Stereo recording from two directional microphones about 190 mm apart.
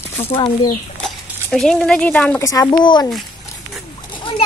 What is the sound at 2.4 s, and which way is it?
Speech, 15° left (ahead or behind).